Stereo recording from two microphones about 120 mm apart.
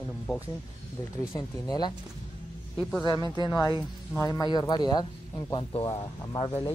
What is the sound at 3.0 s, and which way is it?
Speech, 35° left (ahead or behind).